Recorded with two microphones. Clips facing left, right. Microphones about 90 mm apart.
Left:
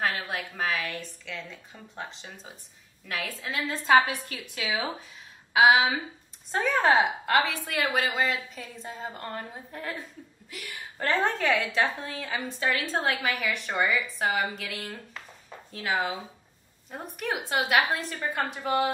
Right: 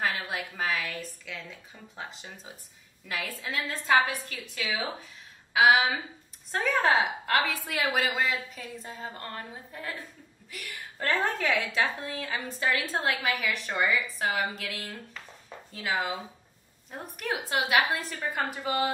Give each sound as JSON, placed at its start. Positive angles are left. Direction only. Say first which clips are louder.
{"t": 0.0, "sound": "a woman's voice", "louder": "left 1 dB", "side_deg": 0}
{"t": 3.8, "sound": "a woman's voice", "louder": "left 3 dB", "side_deg": 15}
{"t": 6.5, "sound": "a woman's voice", "louder": "left 2 dB", "side_deg": 0}
{"t": 10.5, "sound": "a woman's voice", "louder": "left 1 dB", "side_deg": 5}